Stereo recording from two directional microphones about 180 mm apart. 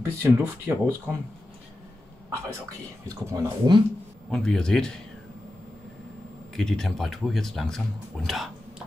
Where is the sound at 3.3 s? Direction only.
20° right (ahead or behind).